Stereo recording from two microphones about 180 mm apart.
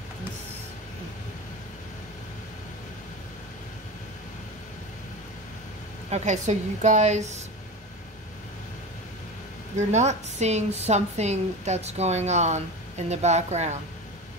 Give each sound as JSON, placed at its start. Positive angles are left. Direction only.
{"t": 6.0, "sound": "speech", "side_deg": -40}
{"t": 9.8, "sound": "speech", "side_deg": -40}